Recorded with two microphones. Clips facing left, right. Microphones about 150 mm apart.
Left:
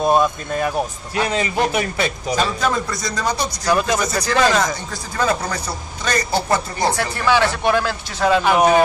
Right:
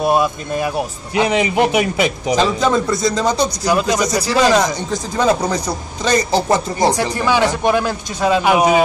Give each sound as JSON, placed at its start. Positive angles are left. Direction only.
{"t": 0.0, "sound": "a man's voice", "side_deg": -10}